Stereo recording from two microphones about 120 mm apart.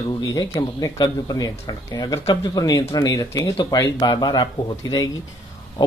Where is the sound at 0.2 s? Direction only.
30° left (ahead or behind).